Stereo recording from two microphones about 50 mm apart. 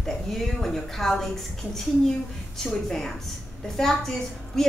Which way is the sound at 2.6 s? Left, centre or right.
Centre.